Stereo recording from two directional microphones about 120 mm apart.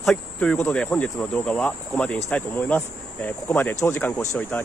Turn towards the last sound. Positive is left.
turn(degrees=15)  # may be behind; listen again after turning